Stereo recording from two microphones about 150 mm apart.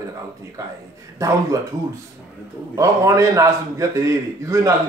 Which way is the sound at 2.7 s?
20° right (ahead or behind).